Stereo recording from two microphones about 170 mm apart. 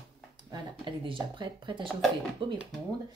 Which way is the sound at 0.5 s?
30° right (ahead or behind).